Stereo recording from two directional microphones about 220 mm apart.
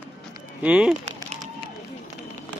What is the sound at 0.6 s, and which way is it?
Speech, 5° right (ahead or behind).